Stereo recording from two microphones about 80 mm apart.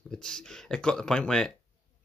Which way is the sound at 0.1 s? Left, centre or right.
Centre.